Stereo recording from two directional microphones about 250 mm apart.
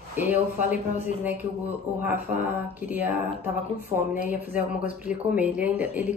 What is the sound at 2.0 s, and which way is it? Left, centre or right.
Speech, centre.